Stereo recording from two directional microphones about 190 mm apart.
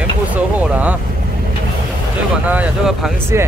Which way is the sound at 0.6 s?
10° right (ahead or behind).